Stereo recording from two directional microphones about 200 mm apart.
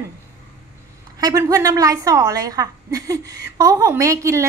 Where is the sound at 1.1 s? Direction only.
15° right (ahead or behind).